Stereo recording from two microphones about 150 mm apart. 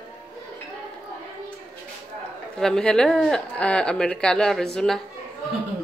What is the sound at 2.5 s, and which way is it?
Speech, 5° left (ahead or behind).